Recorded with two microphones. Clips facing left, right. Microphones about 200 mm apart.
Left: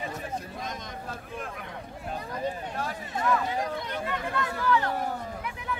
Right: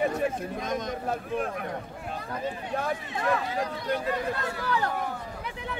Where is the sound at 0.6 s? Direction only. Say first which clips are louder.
Right 7 dB; 50° right (ahead or behind).